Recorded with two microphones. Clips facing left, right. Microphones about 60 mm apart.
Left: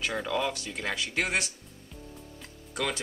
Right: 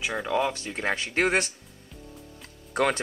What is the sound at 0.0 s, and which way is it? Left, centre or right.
Speech, centre.